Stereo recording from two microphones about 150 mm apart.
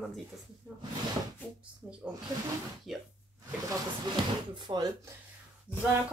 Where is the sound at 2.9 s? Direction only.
Centre (ahead or behind).